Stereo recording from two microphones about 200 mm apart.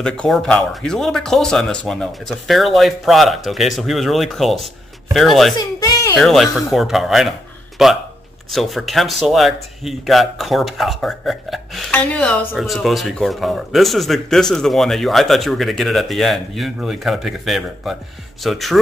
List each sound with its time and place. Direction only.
0.0 s speech: 5° left (ahead or behind)
5.6 s a child's voice: 20° left (ahead or behind)
6.1 s speech: centre (ahead or behind)